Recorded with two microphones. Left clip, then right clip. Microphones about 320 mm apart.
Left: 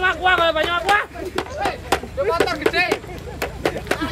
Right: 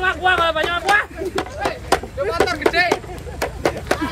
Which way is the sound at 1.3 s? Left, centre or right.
Centre.